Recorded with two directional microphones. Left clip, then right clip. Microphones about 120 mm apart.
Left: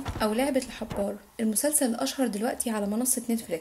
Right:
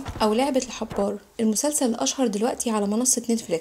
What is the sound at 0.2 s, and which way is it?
A woman's voice, 40° right (ahead or behind).